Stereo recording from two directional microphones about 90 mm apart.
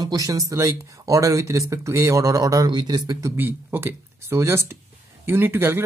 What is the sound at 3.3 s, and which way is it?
Speech, 25° right (ahead or behind).